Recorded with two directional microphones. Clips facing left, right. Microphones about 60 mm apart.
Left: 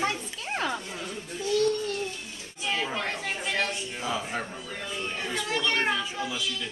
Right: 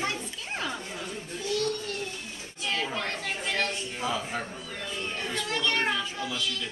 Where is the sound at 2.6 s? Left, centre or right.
Centre.